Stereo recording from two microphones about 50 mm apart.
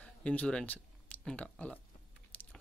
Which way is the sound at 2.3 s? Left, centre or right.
Left.